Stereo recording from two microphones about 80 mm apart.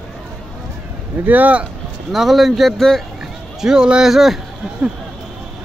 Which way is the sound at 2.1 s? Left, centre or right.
Centre.